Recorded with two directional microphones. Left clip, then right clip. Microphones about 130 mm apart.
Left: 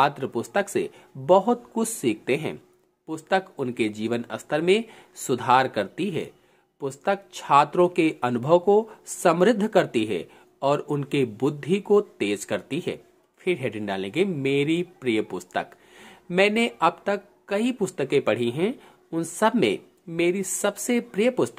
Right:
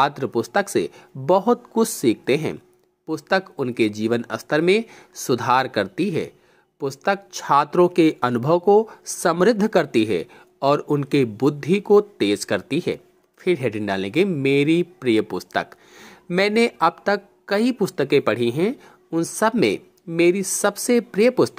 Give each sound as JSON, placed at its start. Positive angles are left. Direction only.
{"t": 0.0, "sound": "speech", "side_deg": -30}
{"t": 2.0, "sound": "speech", "side_deg": -40}
{"t": 4.8, "sound": "speech", "side_deg": -25}
{"t": 6.9, "sound": "speech", "side_deg": -25}
{"t": 10.8, "sound": "speech", "side_deg": -25}
{"t": 19.0, "sound": "speech", "side_deg": -25}